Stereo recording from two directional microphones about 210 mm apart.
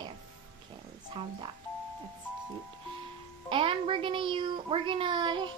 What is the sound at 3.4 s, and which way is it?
A woman's voice, 25° right (ahead or behind).